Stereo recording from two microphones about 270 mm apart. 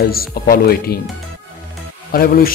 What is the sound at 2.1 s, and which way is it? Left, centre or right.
Speech, left.